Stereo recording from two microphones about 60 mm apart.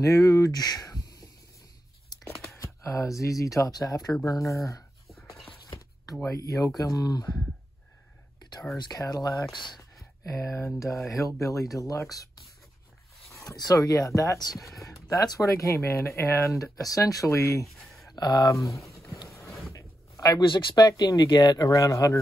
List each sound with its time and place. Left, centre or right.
0.0 s speech: left
2.5 s speech: left
4.2 s speech: left
6.2 s speech: left
8.9 s speech: left
11.9 s speech: left
13.3 s speech: left
16.7 s speech: left
17.7 s a sound: centre
18.1 s a sound: left
20.9 s speech: left